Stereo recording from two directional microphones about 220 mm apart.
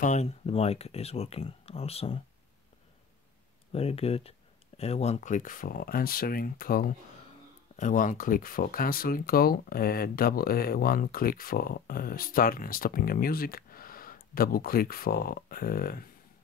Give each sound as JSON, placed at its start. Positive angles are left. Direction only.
{"t": 0.0, "sound": "speech", "side_deg": 30}
{"t": 3.7, "sound": "speech", "side_deg": 25}